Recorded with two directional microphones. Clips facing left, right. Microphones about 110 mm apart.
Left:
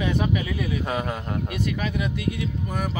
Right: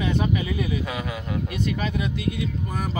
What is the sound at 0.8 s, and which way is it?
Speech, 45° left (ahead or behind).